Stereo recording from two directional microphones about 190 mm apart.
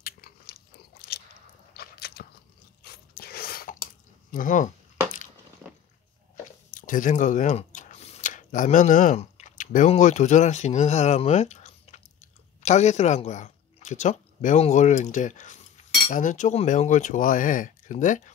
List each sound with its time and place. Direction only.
0.0 s biting: 50° left (ahead or behind)
2.8 s crunch: 55° left (ahead or behind)
4.3 s speech: 45° left (ahead or behind)
6.3 s speech: 45° left (ahead or behind)